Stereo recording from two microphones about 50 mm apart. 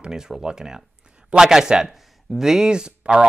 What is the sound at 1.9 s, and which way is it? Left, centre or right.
Speech, centre.